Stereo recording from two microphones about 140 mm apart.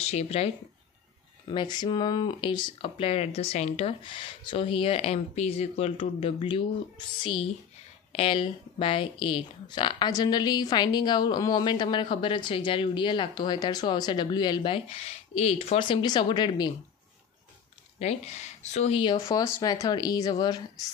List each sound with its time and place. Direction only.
0.0 s speech: 50° left (ahead or behind)
1.5 s speech: 30° left (ahead or behind)
17.9 s speech: 50° left (ahead or behind)
19.6 s a woman's voice: 30° left (ahead or behind)